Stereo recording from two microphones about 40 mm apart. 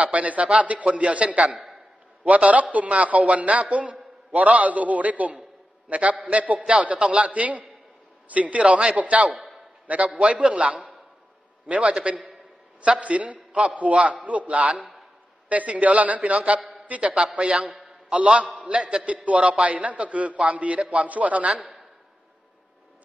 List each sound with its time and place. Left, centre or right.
0.0 s a man's voice: right
17.4 s a man's voice: right
19.2 s a man's voice: right